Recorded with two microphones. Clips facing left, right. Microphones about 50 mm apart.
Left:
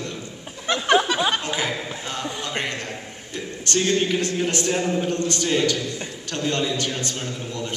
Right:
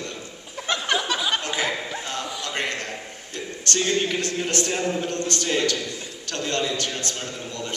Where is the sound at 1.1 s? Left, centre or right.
Centre.